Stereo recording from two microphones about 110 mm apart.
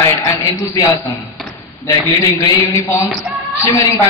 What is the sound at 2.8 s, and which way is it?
Speech, 20° left (ahead or behind).